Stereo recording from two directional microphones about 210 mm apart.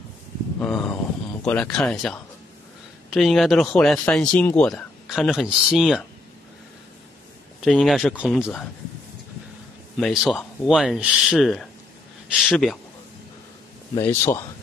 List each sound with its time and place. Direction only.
0.6 s speech: 5° left (ahead or behind)
7.6 s speech: centre (ahead or behind)
9.9 s speech: centre (ahead or behind)
13.9 s speech: 10° left (ahead or behind)